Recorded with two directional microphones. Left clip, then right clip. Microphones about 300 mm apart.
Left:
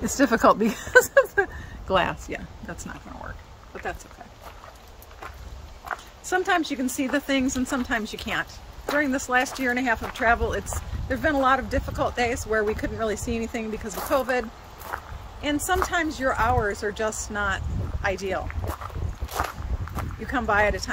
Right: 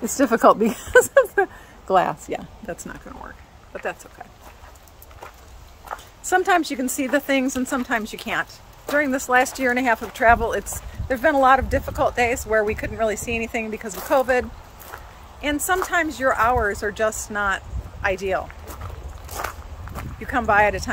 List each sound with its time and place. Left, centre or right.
0.0 s speech: centre
6.2 s speech: centre
14.9 s walk: centre
15.4 s speech: centre
20.2 s speech: centre